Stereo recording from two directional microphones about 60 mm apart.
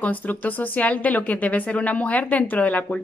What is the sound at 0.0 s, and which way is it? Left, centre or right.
Speech, left.